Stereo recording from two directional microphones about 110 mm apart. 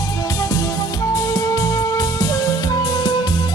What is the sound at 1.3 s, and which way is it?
Music, 30° left (ahead or behind).